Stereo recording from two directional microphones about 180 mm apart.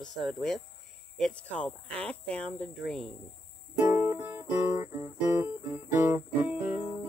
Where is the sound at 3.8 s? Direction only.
10° right (ahead or behind).